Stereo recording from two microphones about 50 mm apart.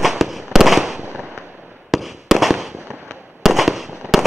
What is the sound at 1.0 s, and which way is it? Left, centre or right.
Fireworks, right.